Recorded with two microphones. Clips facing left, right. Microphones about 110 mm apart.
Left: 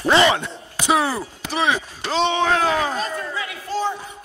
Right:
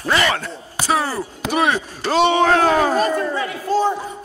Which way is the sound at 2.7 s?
50° right (ahead or behind).